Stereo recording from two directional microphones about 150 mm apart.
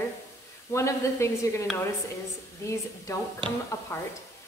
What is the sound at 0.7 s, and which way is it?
A woman's voice, 20° left (ahead or behind).